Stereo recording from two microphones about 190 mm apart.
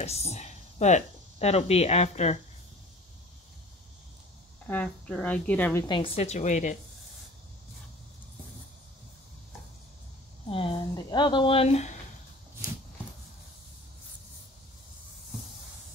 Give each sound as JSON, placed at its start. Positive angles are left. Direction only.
{"t": 0.0, "sound": "speech", "side_deg": 35}
{"t": 4.6, "sound": "a woman's voice", "side_deg": 5}
{"t": 5.9, "sound": "speech", "side_deg": 30}
{"t": 10.5, "sound": "speech", "side_deg": 25}